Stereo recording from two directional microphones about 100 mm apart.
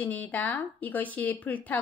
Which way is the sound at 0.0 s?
15° left (ahead or behind).